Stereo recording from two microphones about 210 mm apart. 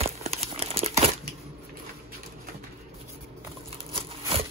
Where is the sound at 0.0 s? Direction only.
30° right (ahead or behind).